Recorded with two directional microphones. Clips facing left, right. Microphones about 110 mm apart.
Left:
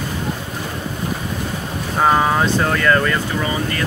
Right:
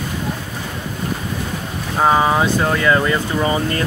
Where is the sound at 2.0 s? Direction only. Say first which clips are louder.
Right 1 dB; 5° right (ahead or behind).